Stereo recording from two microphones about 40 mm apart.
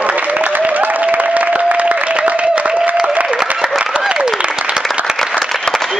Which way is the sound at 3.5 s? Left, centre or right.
Centre.